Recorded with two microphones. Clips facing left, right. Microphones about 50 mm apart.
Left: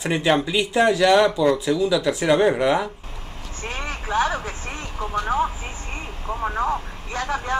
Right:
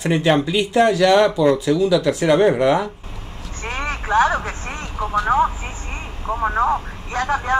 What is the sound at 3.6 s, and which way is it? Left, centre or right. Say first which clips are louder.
Vehicle: right 5 dB; right.